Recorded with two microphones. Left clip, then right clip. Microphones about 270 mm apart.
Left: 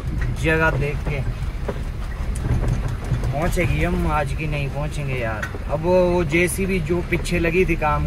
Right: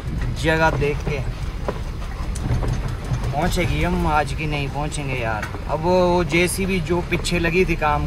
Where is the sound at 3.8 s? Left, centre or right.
Centre.